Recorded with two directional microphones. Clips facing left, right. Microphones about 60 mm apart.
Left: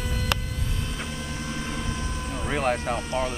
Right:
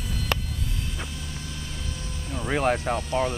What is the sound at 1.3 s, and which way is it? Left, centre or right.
Vehicle, left.